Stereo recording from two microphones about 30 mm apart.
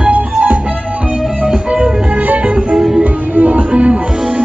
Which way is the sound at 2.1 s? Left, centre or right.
Right.